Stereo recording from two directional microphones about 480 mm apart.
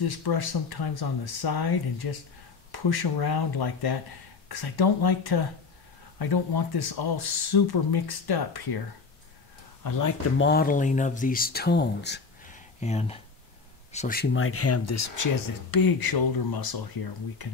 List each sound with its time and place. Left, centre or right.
0.0 s speech: left
9.8 s speech: left
10.3 s speech: left
17.4 s speech: left